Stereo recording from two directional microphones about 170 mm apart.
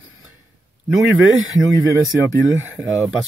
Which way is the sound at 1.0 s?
5° right (ahead or behind).